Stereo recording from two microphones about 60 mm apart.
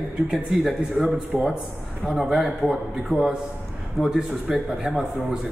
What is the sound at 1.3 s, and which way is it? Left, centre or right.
Speech, right.